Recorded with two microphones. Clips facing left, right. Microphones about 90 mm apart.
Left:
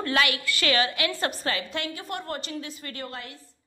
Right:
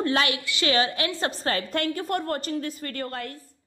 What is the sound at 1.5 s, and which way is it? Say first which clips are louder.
A woman's voice: right 5 dB; 45° right (ahead or behind).